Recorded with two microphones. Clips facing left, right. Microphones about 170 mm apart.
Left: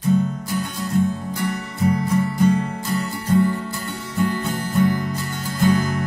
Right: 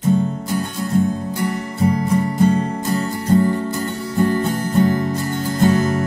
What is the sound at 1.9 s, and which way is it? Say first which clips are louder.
Music: right 1 dB; 35° right (ahead or behind).